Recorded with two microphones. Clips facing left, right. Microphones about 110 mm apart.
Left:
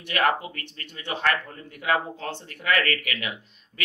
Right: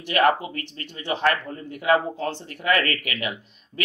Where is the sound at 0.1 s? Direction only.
35° right (ahead or behind).